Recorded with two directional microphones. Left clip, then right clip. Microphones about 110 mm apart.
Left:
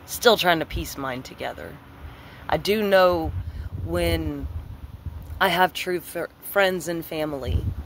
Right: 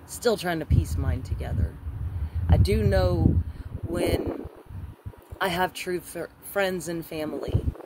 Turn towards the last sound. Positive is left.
turn(degrees=-25)  # may be behind; listen again after turning